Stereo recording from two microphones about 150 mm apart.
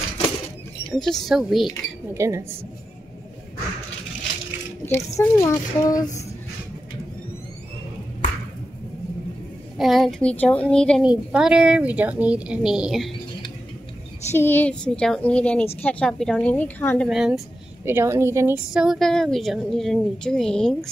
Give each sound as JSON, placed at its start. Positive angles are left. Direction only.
{"t": 1.0, "sound": "a woman's voice", "side_deg": 0}
{"t": 2.1, "sound": "speech", "side_deg": -20}
{"t": 4.8, "sound": "speech", "side_deg": 20}
{"t": 9.8, "sound": "a woman's voice", "side_deg": 0}
{"t": 11.1, "sound": "a woman's voice", "side_deg": -5}
{"t": 14.3, "sound": "a woman's voice", "side_deg": 15}
{"t": 17.1, "sound": "a woman's voice", "side_deg": -5}
{"t": 17.8, "sound": "speech", "side_deg": -15}
{"t": 18.7, "sound": "a woman's voice", "side_deg": -5}